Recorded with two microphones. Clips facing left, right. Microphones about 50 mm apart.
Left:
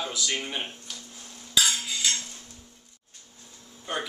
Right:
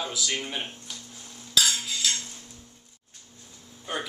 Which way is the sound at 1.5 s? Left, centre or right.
Centre.